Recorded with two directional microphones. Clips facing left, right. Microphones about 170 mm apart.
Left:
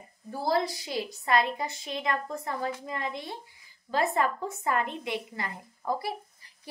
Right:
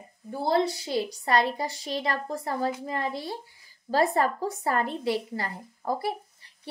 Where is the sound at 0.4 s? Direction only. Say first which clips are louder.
Right 3 dB; 30° right (ahead or behind).